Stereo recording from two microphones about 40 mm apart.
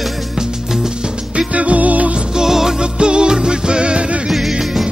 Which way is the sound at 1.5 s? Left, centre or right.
Right.